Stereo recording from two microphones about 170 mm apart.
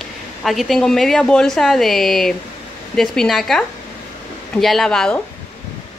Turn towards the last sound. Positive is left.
turn(degrees=5)  # may be behind; listen again after turning